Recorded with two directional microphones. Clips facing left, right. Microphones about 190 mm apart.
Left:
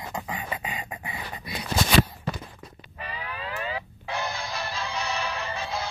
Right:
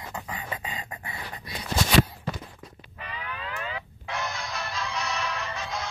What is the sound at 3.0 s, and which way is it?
Music, 35° left (ahead or behind).